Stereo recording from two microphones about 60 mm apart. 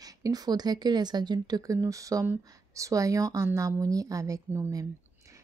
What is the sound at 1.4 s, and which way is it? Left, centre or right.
Speech, right.